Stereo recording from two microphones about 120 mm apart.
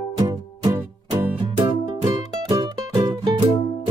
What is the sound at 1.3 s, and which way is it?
Music, 45° right (ahead or behind).